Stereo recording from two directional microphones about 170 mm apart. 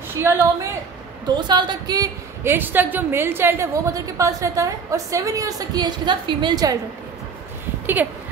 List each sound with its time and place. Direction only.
0.1 s a woman's voice: 15° right (ahead or behind)
1.3 s a woman's voice: 25° right (ahead or behind)
2.5 s a woman's voice: 10° right (ahead or behind)
7.8 s speech: 10° right (ahead or behind)